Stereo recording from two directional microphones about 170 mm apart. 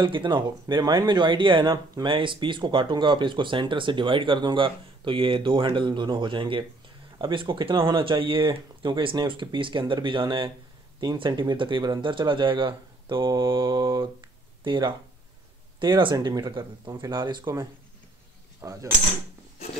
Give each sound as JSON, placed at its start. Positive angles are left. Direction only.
{"t": 0.0, "sound": "speech", "side_deg": -30}
{"t": 16.0, "sound": "speech", "side_deg": -25}